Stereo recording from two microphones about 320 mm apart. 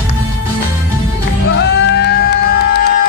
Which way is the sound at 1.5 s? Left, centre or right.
Left.